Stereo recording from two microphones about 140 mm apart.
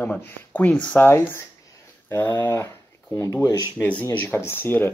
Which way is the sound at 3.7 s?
10° left (ahead or behind).